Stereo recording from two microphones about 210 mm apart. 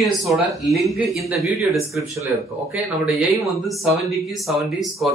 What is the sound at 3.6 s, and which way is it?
Speech, centre (ahead or behind).